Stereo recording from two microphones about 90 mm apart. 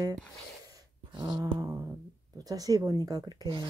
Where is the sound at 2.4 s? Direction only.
40° right (ahead or behind).